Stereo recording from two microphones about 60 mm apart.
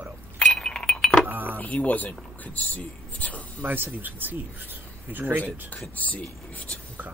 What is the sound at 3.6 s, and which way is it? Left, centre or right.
Speech, right.